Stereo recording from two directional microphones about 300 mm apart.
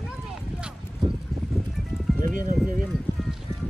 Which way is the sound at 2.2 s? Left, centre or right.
Right.